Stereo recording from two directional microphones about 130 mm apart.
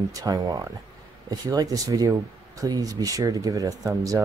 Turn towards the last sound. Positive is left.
turn(degrees=-25)  # may be behind; listen again after turning